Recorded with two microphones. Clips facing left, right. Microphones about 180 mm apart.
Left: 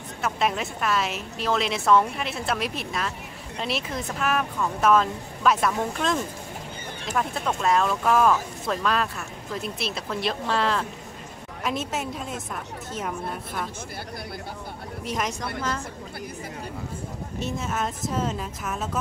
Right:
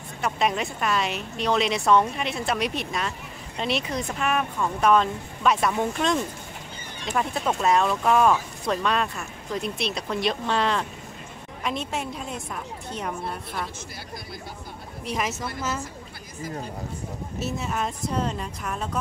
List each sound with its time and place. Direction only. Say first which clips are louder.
0.2 s a woman's voice: right 1 dB; centre (ahead or behind)
7.2 s a woman's voice: right 1 dB; centre (ahead or behind)
15.0 s a woman's voice: right 1 dB; centre (ahead or behind)
17.4 s a woman's voice: even; centre (ahead or behind)